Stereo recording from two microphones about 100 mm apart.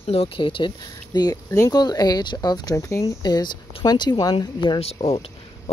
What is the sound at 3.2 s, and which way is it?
Speech, 45° left (ahead or behind).